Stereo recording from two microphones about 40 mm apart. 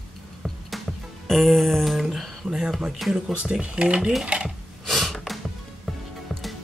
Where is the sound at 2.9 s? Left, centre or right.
Centre.